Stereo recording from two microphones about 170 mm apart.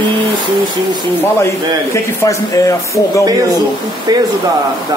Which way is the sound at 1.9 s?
15° left (ahead or behind).